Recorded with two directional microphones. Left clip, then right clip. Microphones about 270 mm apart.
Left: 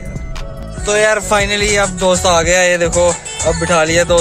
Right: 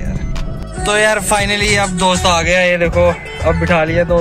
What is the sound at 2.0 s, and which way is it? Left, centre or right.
Speech, left.